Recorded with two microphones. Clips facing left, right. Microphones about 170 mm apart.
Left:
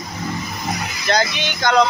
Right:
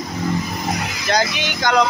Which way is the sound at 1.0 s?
10° right (ahead or behind).